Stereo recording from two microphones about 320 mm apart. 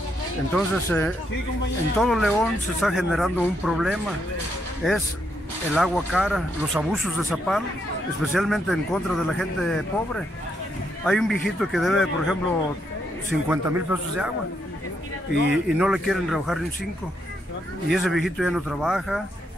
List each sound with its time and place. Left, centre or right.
0.5 s speech: centre
13.5 s speech: centre
15.5 s speech: centre
17.8 s speech: centre